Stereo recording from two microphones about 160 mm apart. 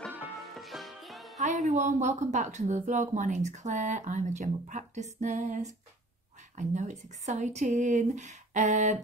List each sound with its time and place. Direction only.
0.6 s music: centre (ahead or behind)
1.4 s speech: 50° right (ahead or behind)